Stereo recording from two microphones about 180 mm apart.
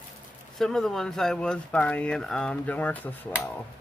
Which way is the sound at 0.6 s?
5° left (ahead or behind).